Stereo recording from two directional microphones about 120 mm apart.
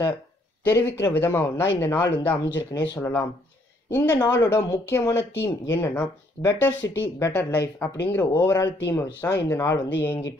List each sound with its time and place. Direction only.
0.7 s speech: 25° left (ahead or behind)
2.7 s speech: 35° left (ahead or behind)
3.0 s speech: 20° left (ahead or behind)
4.1 s speech: 30° left (ahead or behind)